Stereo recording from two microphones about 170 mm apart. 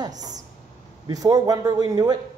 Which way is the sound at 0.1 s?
45° right (ahead or behind).